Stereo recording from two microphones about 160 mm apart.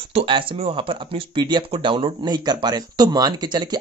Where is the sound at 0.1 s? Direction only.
35° right (ahead or behind).